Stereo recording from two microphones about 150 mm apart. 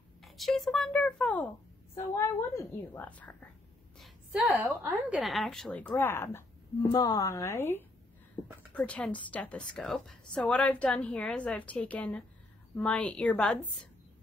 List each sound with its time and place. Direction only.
0.2 s a woman's voice: centre (ahead or behind)
4.0 s a woman's voice: 5° right (ahead or behind)